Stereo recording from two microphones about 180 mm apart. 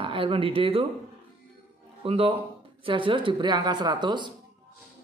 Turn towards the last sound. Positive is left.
turn(degrees=-25)  # may be behind; listen again after turning